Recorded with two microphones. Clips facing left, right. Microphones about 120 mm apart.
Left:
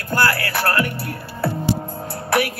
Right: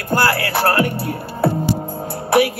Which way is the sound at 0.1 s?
25° right (ahead or behind).